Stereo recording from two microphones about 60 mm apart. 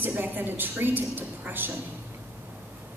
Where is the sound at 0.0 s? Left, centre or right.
Right.